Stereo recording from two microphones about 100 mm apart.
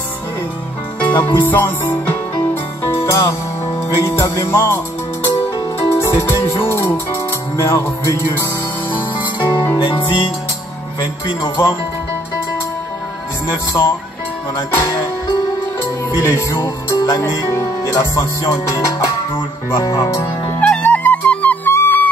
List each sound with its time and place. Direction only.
1.0 s music: 20° left (ahead or behind)
3.1 s music: 30° left (ahead or behind)
5.9 s music: 25° left (ahead or behind)
9.8 s music: 60° left (ahead or behind)
11.4 s music: 25° left (ahead or behind)
13.5 s music: 25° left (ahead or behind)
14.7 s speech: 30° left (ahead or behind)
16.2 s music: 30° left (ahead or behind)
16.5 s speech: 35° left (ahead or behind)
20.6 s music: 10° left (ahead or behind)